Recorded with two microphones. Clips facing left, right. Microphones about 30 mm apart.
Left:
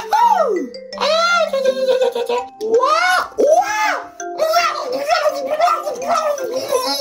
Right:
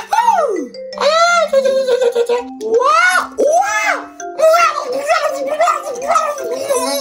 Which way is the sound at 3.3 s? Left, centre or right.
Left.